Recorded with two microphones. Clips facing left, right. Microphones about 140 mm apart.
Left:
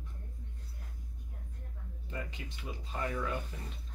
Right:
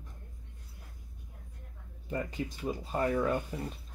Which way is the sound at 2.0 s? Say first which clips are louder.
Right 8 dB; 40° right (ahead or behind).